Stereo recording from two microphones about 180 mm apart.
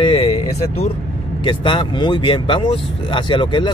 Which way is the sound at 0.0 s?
35° left (ahead or behind).